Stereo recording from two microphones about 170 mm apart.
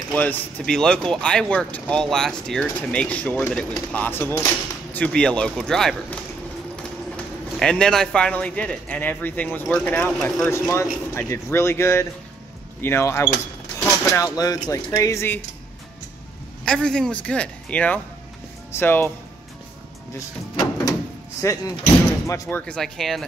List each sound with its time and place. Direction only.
0.1 s speech: 10° left (ahead or behind)
7.5 s speech: 5° left (ahead or behind)
16.6 s speech: 5° left (ahead or behind)
20.5 s door: 25° left (ahead or behind)
21.4 s speech: 15° left (ahead or behind)
22.7 s speech: centre (ahead or behind)